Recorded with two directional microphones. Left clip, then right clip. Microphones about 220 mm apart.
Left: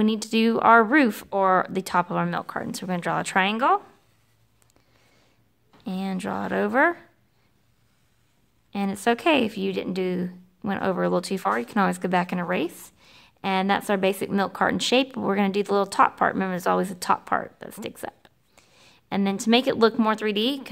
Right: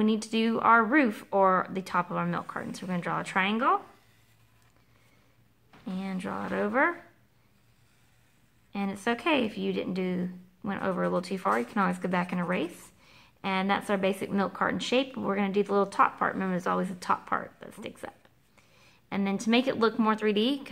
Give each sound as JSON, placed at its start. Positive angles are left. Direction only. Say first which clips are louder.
{"t": 0.0, "sound": "speech", "louder": "left 5 dB", "side_deg": 45}
{"t": 5.9, "sound": "speech", "louder": "left 6 dB", "side_deg": 45}
{"t": 8.7, "sound": "speech", "louder": "left 7 dB", "side_deg": 45}